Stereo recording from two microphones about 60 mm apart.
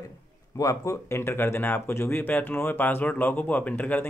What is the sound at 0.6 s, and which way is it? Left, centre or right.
Speech, left.